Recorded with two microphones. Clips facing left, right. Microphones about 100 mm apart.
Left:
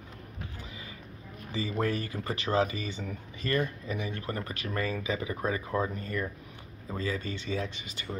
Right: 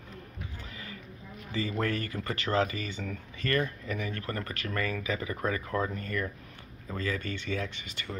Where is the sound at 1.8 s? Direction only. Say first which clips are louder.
Left 1 dB; 20° left (ahead or behind).